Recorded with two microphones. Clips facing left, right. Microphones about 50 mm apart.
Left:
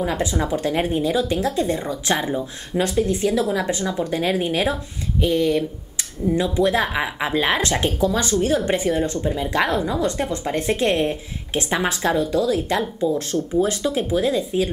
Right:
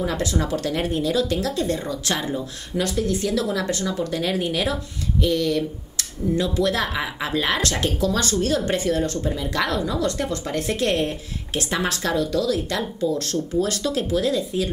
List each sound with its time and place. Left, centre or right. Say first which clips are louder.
0.0 s speech: left 2 dB; centre